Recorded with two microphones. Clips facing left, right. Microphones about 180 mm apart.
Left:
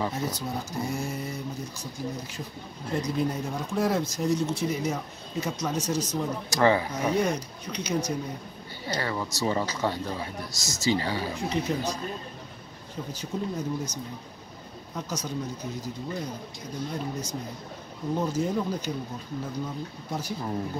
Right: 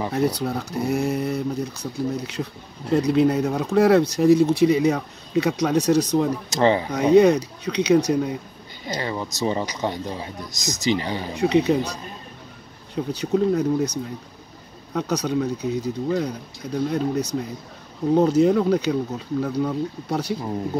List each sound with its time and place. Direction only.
0.1 s speech: 65° right (ahead or behind)
6.5 s speech: 25° right (ahead or behind)
7.2 s speech: 70° right (ahead or behind)
8.8 s speech: 15° right (ahead or behind)
11.3 s speech: 70° right (ahead or behind)
15.0 s speech: 70° right (ahead or behind)